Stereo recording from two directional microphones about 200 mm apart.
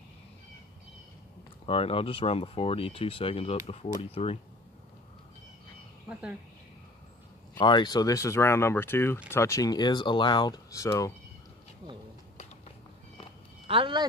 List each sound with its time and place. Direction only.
1.7 s speech: 30° left (ahead or behind)
7.5 s speech: 20° left (ahead or behind)
13.7 s speech: 25° right (ahead or behind)